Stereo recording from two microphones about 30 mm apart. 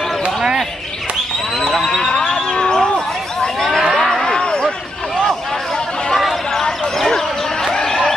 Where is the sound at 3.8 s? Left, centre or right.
Centre.